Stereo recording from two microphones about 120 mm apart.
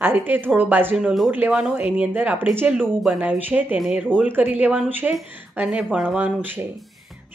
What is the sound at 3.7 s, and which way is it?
Speech, 5° right (ahead or behind).